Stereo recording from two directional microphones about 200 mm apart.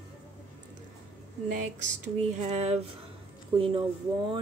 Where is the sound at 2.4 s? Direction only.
30° right (ahead or behind).